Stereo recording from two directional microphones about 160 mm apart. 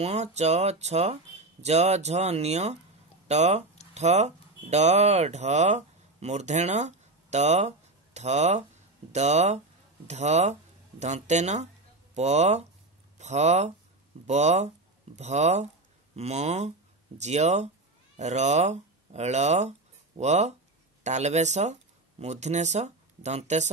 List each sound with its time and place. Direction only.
0.0 s speech: 45° right (ahead or behind)